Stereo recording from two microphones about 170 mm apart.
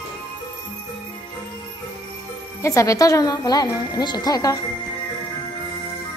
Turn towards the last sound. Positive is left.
turn(degrees=20)  # may be behind; listen again after turning